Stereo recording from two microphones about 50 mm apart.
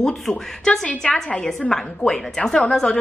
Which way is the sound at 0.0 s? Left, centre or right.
Centre.